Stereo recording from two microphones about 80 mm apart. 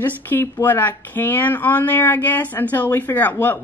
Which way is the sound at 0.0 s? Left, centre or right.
Left.